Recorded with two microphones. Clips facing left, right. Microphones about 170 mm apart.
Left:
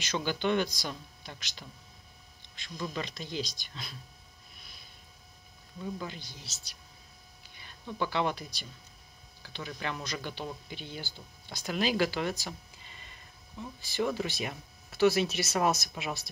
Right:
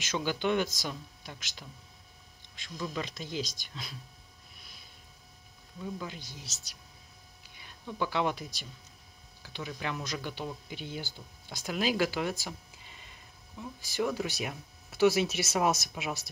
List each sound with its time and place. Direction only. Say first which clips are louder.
0.1 s speech: even; 5° right (ahead or behind)
2.8 s speech: even; 5° right (ahead or behind)
3.3 s speech: even; 45° right (ahead or behind)
5.8 s speech: left 1 dB; 5° right (ahead or behind)
6.2 s speech: right 2 dB; 40° right (ahead or behind)
7.5 s speech: even; 5° right (ahead or behind)
12.4 s a sound: even; 10° right (ahead or behind)
13.6 s speech: even; 5° right (ahead or behind)